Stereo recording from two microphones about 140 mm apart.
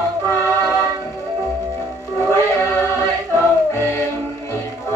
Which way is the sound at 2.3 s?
15° left (ahead or behind).